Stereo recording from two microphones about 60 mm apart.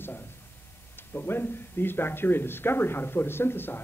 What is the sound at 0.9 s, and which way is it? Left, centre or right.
A man's voice, left.